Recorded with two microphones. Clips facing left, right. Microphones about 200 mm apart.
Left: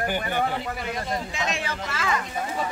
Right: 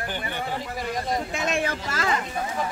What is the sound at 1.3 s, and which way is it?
Speech, 50° right (ahead or behind).